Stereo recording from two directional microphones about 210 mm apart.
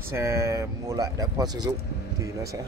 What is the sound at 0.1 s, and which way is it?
Speech, 15° right (ahead or behind).